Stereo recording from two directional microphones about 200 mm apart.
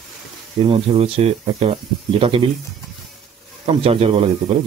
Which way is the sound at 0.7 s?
30° right (ahead or behind).